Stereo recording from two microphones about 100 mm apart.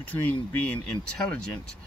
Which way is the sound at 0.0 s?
15° left (ahead or behind).